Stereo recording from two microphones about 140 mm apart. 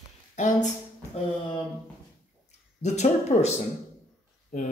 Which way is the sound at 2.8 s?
55° left (ahead or behind).